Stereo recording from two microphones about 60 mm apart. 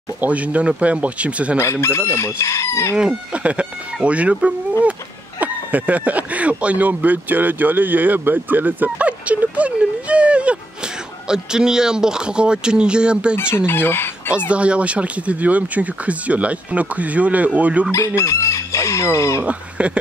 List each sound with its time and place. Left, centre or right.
0.2 s speech: right
1.6 s chicken: left
3.0 s speech: centre
13.7 s chicken: left
14.5 s speech: right
17.9 s chicken: left
19.4 s speech: centre